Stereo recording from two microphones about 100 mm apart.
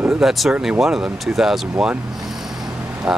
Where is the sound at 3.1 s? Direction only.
5° right (ahead or behind).